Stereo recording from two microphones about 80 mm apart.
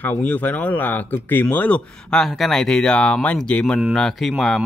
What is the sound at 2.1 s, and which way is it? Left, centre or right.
Speech, centre.